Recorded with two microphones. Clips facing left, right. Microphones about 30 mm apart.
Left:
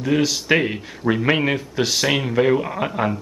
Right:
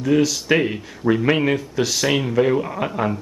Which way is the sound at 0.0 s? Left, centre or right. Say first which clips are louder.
Right 2 dB; centre.